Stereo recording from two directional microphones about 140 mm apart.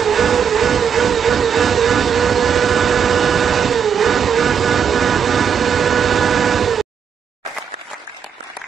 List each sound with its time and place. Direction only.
0.0 s vehicle: centre (ahead or behind)